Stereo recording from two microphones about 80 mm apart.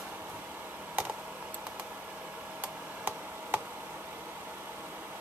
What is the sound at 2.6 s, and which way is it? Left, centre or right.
Tick, right.